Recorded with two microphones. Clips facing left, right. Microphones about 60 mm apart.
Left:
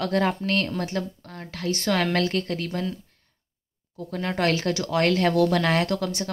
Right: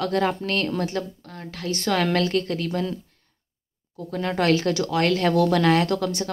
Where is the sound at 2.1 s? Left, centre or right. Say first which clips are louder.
Right 2 dB; left.